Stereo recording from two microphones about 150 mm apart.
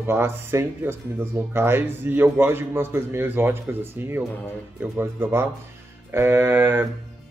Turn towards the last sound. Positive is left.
turn(degrees=-15)  # may be behind; listen again after turning